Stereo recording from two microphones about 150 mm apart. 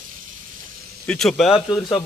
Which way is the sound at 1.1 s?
Centre (ahead or behind).